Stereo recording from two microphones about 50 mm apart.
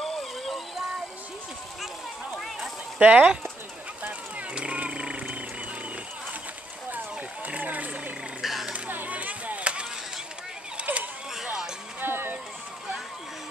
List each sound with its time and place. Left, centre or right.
0.0 s music: centre
3.0 s speech: right
4.6 s a sound: right
6.9 s wild animals: right
8.4 s frog: centre
8.7 s chop: right
10.8 s a sound: right
11.4 s music: centre
12.0 s a sound: right